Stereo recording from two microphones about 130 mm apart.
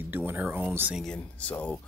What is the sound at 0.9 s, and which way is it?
Speech, 5° left (ahead or behind).